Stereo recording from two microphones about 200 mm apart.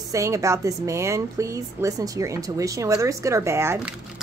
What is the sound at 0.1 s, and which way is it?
A woman's voice, 15° right (ahead or behind).